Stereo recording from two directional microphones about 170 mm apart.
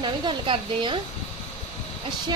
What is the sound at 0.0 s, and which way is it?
Speech, 30° right (ahead or behind).